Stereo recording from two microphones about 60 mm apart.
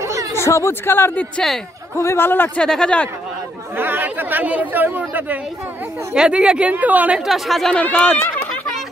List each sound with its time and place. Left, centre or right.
0.0 s a sound: right
0.4 s speech: left
0.8 s speech: left
1.4 s speech: centre
2.1 s speech: left
2.6 s speech: centre
3.7 s speech: right
6.1 s a woman's voice: centre
7.2 s speech: centre
7.7 s speech: centre
8.2 s a sound: left